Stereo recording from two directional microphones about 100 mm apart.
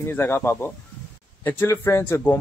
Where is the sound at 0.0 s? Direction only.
25° left (ahead or behind).